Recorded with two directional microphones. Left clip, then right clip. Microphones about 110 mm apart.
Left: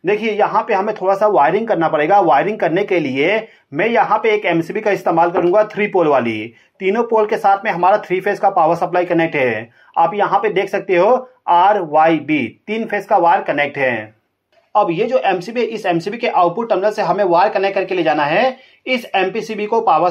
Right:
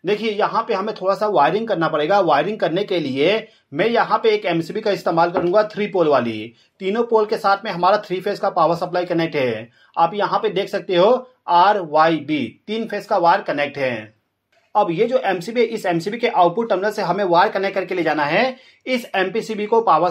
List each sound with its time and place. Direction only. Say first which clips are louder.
0.0 s speech: left 4 dB; 15° right (ahead or behind)
3.7 s speech: left 3 dB; 15° right (ahead or behind)
9.9 s speech: left 3 dB; 35° right (ahead or behind)
10.2 s speech: left 4 dB; 15° right (ahead or behind)
14.7 s speech: left 2 dB; 30° right (ahead or behind)